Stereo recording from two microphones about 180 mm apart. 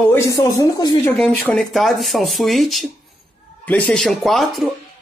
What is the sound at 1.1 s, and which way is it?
Speech, 5° left (ahead or behind).